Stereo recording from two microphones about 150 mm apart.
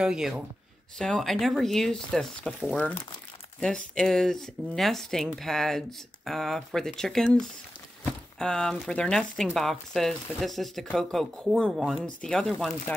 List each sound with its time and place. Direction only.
0.0 s speech: 5° right (ahead or behind)